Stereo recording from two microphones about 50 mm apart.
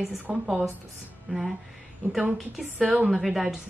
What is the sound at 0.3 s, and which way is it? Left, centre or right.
Speech, centre.